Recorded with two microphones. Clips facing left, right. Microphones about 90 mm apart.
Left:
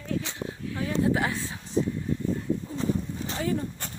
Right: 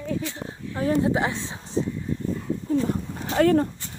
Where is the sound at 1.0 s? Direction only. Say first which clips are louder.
Right 2 dB; 25° right (ahead or behind).